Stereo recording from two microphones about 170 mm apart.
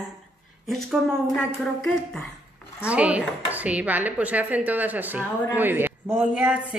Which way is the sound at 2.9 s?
5° right (ahead or behind).